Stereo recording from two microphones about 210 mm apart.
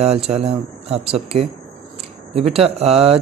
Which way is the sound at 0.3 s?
30° right (ahead or behind).